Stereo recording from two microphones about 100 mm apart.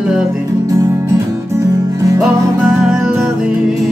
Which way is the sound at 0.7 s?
30° right (ahead or behind).